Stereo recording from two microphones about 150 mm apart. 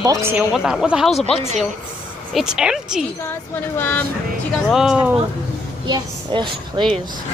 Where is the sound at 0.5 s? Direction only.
5° right (ahead or behind).